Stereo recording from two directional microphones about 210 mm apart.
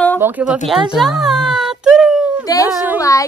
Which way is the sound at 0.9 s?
Centre (ahead or behind).